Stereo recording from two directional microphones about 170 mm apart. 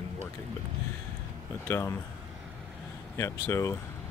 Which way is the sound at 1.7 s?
15° left (ahead or behind).